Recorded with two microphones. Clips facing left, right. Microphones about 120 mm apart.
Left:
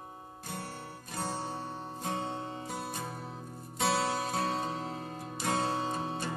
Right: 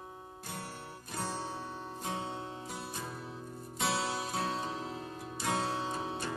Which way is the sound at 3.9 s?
50° left (ahead or behind).